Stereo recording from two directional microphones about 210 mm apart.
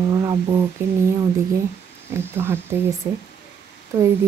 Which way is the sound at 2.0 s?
10° right (ahead or behind).